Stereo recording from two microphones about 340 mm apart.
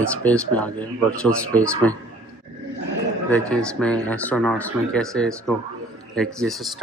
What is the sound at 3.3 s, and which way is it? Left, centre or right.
Speech, centre.